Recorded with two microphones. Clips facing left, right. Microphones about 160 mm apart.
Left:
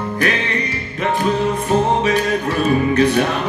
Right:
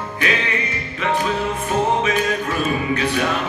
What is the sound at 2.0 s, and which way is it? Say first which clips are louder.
Music: left 3 dB; 35° left (ahead or behind).